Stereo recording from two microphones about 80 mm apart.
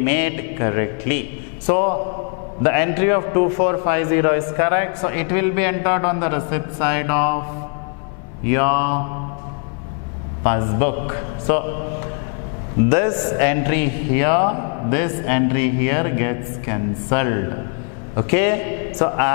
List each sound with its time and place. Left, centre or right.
0.0 s a man's voice: centre
8.5 s a man's voice: centre
10.4 s a man's voice: centre
12.9 s a man's voice: centre